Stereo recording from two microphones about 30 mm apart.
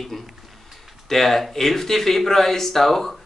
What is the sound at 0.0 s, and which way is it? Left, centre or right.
Speech, centre.